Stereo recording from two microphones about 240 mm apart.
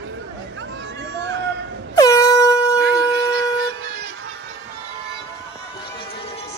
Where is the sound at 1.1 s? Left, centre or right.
Right.